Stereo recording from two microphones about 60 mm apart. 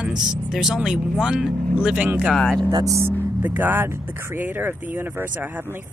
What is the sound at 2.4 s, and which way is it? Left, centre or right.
Speech, centre.